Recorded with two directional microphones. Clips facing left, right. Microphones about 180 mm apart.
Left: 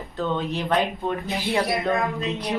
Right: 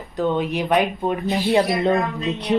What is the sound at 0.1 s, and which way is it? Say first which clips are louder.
Speech: right 5 dB; 15° right (ahead or behind).